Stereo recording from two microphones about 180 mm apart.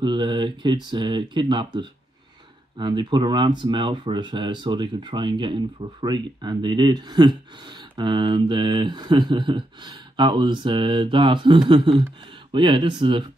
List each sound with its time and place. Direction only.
0.0 s speech: 25° right (ahead or behind)